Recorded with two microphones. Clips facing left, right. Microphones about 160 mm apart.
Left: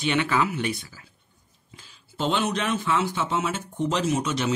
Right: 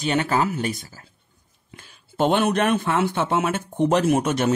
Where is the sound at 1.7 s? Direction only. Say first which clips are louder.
Right 8 dB; 55° right (ahead or behind).